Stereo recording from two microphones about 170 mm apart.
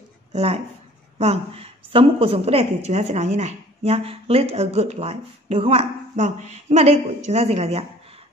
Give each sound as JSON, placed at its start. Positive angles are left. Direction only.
{"t": 0.3, "sound": "a woman's voice", "side_deg": -40}